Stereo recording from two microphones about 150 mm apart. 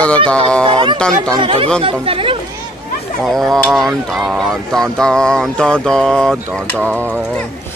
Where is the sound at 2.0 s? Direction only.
35° right (ahead or behind).